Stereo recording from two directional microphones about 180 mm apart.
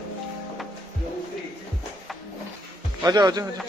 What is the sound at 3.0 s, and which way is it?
Speech, 25° right (ahead or behind).